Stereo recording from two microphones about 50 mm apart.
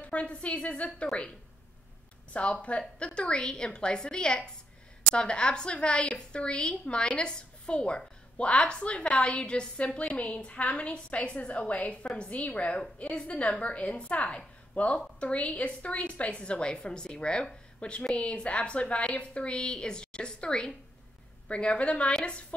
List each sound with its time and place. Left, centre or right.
0.0 s a woman's voice: left
2.3 s a woman's voice: left